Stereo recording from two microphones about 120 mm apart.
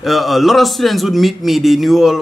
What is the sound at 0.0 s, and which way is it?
A man's voice, centre (ahead or behind).